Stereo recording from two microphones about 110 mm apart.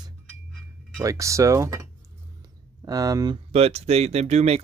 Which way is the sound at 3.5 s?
70° right (ahead or behind).